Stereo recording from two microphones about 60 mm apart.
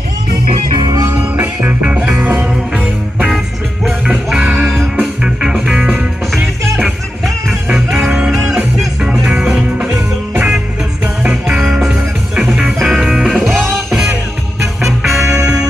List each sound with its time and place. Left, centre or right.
0.9 s music: right
1.3 s music: right
4.3 s music: centre
4.6 s music: right
5.2 s music: centre
7.6 s music: centre
11.6 s music: centre
15.0 s music: centre